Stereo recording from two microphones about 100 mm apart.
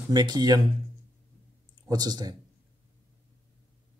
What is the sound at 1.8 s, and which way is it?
Speech, 40° right (ahead or behind).